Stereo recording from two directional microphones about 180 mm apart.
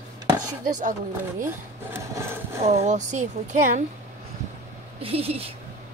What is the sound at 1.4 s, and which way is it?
Speech, 15° right (ahead or behind).